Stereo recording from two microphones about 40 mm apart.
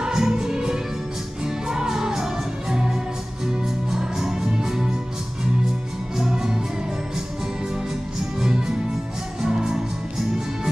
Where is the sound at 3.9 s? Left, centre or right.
Centre.